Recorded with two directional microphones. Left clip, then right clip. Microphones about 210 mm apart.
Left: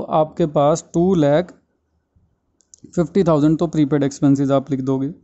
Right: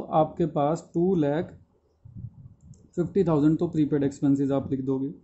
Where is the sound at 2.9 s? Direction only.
55° left (ahead or behind).